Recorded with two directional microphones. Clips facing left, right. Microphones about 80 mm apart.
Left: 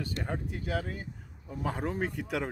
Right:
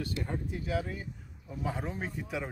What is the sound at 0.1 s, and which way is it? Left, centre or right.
Speech, left.